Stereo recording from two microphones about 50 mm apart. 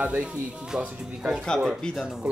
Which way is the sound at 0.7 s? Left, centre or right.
Centre.